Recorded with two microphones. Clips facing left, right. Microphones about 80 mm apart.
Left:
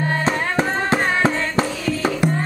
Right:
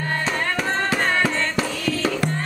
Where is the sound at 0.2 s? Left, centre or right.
Left.